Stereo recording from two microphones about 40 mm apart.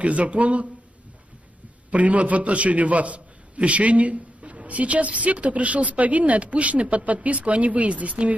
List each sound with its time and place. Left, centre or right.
0.0 s a man's voice: right
1.9 s a man's voice: right